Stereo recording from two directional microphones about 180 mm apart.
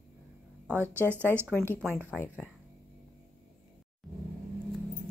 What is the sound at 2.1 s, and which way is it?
Speech, 5° left (ahead or behind).